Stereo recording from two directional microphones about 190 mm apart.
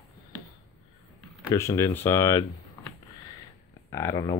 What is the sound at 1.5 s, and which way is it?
Speech, 15° left (ahead or behind).